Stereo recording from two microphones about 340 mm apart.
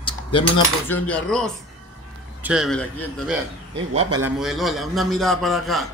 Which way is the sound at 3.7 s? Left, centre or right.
Right.